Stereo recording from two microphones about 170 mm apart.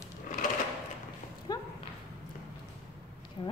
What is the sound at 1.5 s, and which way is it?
Clip-clop, 25° left (ahead or behind).